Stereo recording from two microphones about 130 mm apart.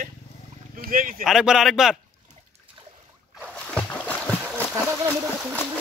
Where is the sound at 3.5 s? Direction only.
10° left (ahead or behind).